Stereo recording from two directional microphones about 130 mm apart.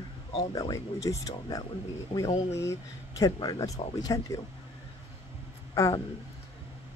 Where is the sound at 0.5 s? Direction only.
30° left (ahead or behind).